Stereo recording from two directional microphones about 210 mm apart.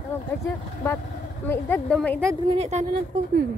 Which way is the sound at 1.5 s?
5° left (ahead or behind).